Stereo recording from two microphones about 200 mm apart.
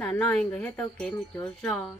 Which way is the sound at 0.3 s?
5° left (ahead or behind).